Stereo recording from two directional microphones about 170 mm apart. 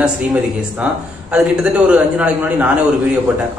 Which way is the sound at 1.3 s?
5° right (ahead or behind).